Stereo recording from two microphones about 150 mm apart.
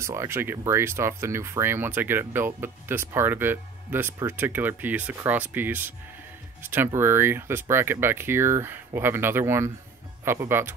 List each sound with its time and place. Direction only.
0.0 s speech: 20° right (ahead or behind)